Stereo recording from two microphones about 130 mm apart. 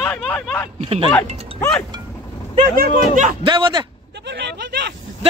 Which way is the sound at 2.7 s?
75° right (ahead or behind).